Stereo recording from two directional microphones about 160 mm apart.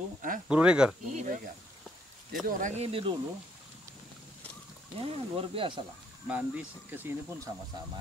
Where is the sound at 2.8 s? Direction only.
35° right (ahead or behind).